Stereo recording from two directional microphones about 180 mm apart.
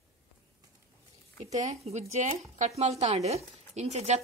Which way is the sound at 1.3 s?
40° right (ahead or behind).